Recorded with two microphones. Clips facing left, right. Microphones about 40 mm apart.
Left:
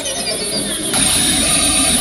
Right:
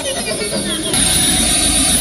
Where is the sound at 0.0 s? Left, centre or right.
Right.